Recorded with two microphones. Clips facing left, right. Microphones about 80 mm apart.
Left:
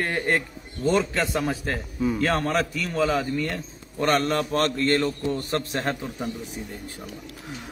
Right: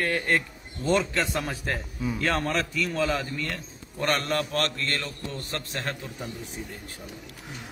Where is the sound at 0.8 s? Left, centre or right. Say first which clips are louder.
Left 2 dB; centre; by 5.9 s left.